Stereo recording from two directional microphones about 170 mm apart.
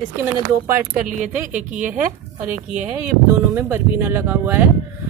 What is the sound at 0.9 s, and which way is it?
Speech, 50° right (ahead or behind).